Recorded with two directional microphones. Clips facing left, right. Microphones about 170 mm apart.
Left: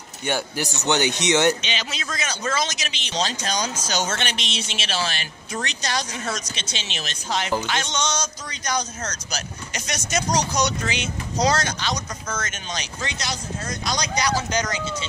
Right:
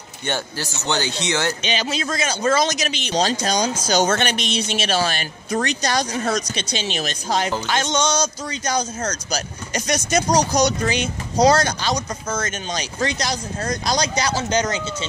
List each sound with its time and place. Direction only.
0.2 s speech: 15° left (ahead or behind)
1.6 s a man's voice: 40° right (ahead or behind)
4.0 s a man's voice: 50° right (ahead or behind); by 15.0 s 25° right (ahead or behind)